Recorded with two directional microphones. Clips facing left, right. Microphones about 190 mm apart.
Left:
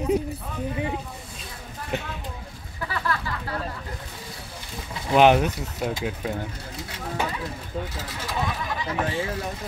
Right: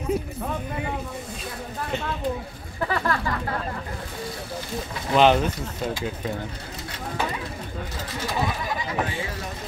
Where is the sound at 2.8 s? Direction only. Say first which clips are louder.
Right 4 dB; 50° right (ahead or behind).